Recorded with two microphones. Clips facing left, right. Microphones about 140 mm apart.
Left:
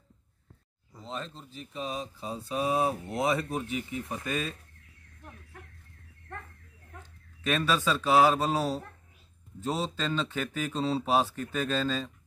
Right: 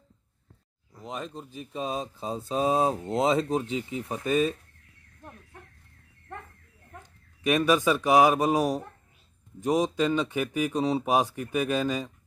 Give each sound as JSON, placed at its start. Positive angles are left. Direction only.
{"t": 1.0, "sound": "speech", "side_deg": -15}
{"t": 7.0, "sound": "speech", "side_deg": -15}